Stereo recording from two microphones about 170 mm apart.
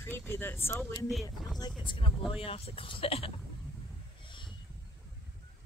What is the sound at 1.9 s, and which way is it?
Speech, 30° left (ahead or behind).